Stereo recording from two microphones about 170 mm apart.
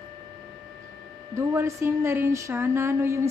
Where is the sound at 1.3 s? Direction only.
15° right (ahead or behind).